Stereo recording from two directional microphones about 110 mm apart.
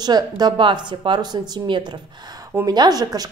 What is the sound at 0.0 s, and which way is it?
A woman's voice, 40° right (ahead or behind).